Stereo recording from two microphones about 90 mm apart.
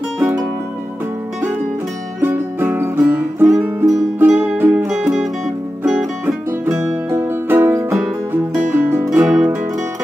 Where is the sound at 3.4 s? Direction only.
5° right (ahead or behind).